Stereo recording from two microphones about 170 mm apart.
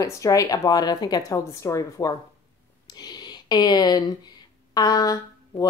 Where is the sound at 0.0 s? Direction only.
20° left (ahead or behind).